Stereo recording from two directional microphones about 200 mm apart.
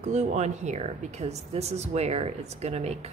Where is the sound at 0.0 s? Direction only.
35° right (ahead or behind).